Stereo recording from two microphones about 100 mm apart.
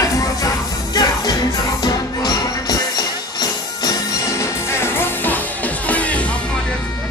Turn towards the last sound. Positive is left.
turn(degrees=15)  # may be behind; listen again after turning